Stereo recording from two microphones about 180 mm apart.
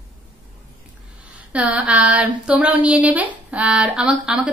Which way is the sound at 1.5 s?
5° right (ahead or behind).